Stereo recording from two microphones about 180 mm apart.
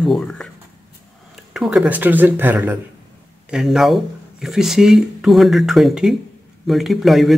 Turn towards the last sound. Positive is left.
turn(degrees=0)  # may be behind; listen again after turning